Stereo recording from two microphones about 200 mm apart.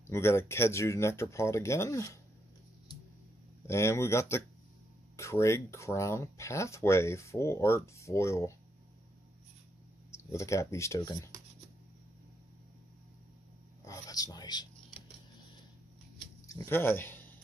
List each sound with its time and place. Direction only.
0.0 s speech: 10° left (ahead or behind)
3.6 s speech: 15° left (ahead or behind)
10.1 s speech: 15° left (ahead or behind)
13.8 s a sound: 20° left (ahead or behind)
16.4 s speech: 15° left (ahead or behind)